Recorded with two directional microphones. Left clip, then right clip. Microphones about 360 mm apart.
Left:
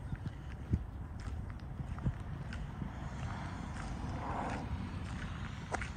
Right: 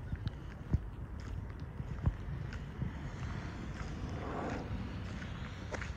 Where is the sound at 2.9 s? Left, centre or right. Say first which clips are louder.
Left 1 dB; centre.